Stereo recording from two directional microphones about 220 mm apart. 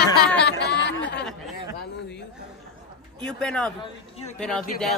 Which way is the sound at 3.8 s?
25° left (ahead or behind).